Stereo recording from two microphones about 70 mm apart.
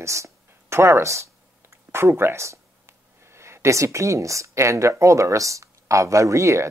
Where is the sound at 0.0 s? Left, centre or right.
Right.